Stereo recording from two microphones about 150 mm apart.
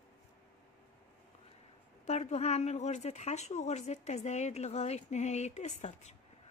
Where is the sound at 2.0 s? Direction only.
45° left (ahead or behind).